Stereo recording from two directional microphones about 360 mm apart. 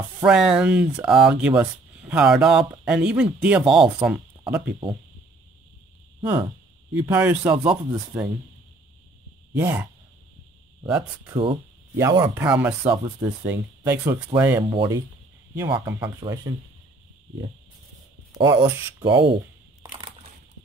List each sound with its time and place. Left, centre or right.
0.2 s speech: centre
7.0 s speech: centre
9.5 s speech: centre
18.4 s speech: centre
19.1 s speech: right
19.8 s crushing: centre